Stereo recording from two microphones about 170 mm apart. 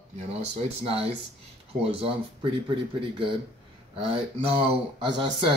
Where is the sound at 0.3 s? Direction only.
40° right (ahead or behind).